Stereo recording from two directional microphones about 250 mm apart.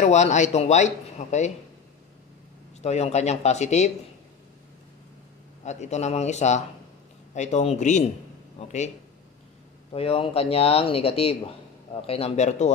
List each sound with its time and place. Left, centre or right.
0.0 s speech: left
2.8 s speech: left
5.6 s speech: left
9.9 s speech: left